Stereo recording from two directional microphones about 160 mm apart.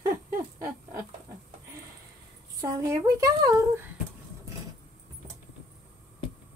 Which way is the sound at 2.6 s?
20° right (ahead or behind).